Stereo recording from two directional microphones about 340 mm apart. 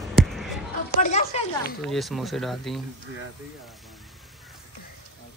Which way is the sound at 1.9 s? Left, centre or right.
Centre.